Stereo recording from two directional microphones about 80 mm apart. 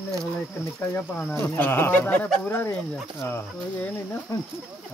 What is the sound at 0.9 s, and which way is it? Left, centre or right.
Speech, left.